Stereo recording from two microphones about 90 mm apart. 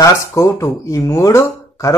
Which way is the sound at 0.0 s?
35° left (ahead or behind).